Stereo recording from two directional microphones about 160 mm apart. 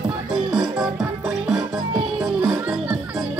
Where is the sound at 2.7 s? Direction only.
5° right (ahead or behind).